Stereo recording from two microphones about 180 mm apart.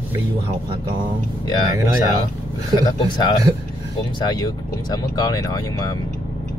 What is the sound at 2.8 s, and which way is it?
Speech, 20° left (ahead or behind).